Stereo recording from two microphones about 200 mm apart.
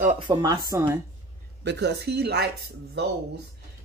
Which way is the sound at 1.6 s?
60° right (ahead or behind).